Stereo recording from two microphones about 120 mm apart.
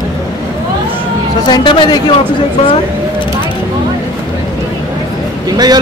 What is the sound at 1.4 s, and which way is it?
Speech, 40° left (ahead or behind).